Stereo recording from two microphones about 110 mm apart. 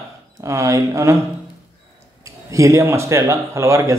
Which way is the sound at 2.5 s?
30° right (ahead or behind).